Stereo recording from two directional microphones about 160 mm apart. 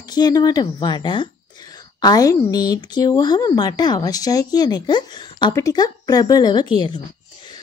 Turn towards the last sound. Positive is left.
turn(degrees=30)  # may be behind; listen again after turning